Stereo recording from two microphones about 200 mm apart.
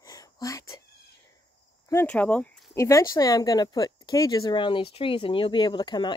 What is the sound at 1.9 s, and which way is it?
Speech, 10° left (ahead or behind).